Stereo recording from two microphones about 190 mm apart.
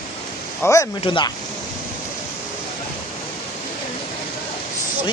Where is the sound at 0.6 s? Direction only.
15° left (ahead or behind).